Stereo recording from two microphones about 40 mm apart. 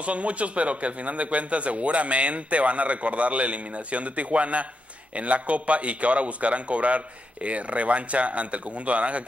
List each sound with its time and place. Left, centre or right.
0.0 s speech: right